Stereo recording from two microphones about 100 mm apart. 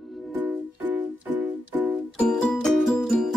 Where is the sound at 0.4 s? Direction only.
15° right (ahead or behind).